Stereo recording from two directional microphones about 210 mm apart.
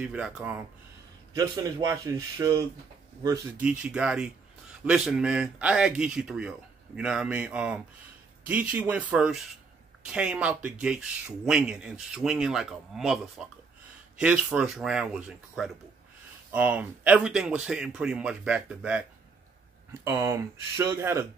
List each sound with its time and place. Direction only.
0.0 s speech: 5° right (ahead or behind)
1.3 s speech: 15° right (ahead or behind)
3.6 s speech: 5° right (ahead or behind)